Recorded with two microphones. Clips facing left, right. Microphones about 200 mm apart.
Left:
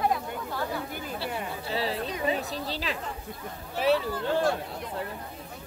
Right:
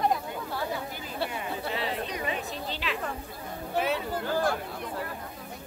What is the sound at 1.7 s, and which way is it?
A woman's voice, 35° left (ahead or behind).